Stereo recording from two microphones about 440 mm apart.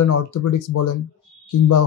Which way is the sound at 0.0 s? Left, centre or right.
Left.